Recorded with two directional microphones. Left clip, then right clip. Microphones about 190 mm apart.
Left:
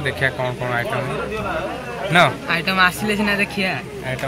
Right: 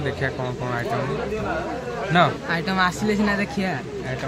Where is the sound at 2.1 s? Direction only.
5° left (ahead or behind).